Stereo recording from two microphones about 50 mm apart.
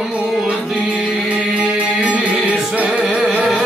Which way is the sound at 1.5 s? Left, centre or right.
Right.